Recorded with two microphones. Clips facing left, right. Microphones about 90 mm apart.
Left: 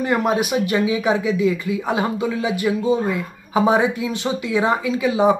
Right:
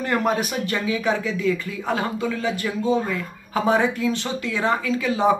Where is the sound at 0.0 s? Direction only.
10° left (ahead or behind).